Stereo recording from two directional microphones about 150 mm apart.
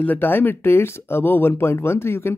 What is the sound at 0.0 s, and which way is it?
Speech, 10° left (ahead or behind).